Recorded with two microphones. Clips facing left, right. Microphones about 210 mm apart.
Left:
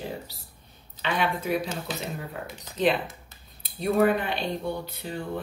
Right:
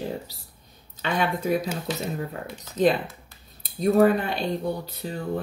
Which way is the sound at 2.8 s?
40° right (ahead or behind).